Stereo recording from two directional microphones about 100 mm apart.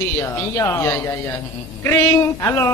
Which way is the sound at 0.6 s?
25° left (ahead or behind).